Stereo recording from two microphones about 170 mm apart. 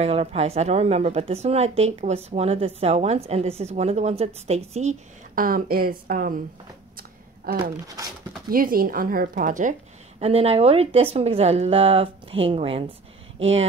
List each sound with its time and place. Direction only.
0.0 s speech: 35° right (ahead or behind)
5.3 s speech: 60° right (ahead or behind)
8.5 s speech: 55° right (ahead or behind)
10.2 s speech: 35° right (ahead or behind)